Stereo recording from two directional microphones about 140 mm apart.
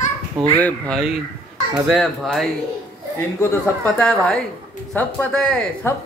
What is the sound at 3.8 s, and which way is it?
Speech, 5° left (ahead or behind).